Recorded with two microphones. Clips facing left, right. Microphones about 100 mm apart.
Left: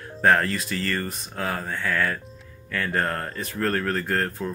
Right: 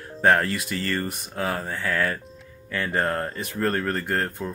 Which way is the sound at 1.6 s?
5° right (ahead or behind).